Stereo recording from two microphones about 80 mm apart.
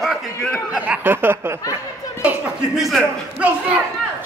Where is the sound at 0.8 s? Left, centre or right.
Right.